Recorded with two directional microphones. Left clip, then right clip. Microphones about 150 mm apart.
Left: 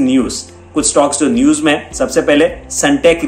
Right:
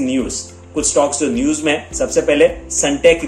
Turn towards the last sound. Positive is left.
turn(degrees=-15)  # may be behind; listen again after turning